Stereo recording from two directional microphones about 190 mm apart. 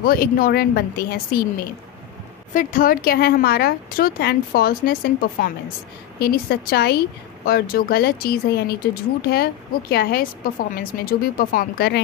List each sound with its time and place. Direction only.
0.0 s speech: 50° left (ahead or behind)